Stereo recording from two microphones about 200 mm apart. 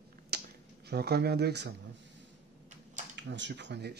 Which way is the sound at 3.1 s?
60° right (ahead or behind).